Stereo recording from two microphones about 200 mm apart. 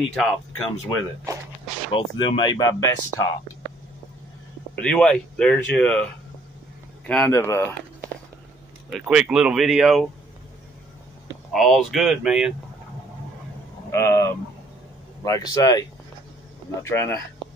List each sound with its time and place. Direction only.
0.1 s speech: 5° left (ahead or behind)
1.3 s speech: 15° right (ahead or behind)
1.9 s speech: 25° left (ahead or behind)
4.7 s speech: 5° left (ahead or behind)
7.1 s speech: 10° left (ahead or behind)
9.0 s speech: 5° right (ahead or behind)
11.5 s speech: centre (ahead or behind)
13.9 s speech: 15° left (ahead or behind)
16.8 s speech: 15° left (ahead or behind)